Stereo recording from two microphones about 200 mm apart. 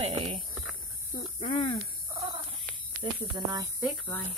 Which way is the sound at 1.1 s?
30° left (ahead or behind).